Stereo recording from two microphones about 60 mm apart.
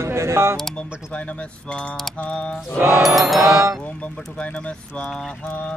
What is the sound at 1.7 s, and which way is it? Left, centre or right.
Speech, centre.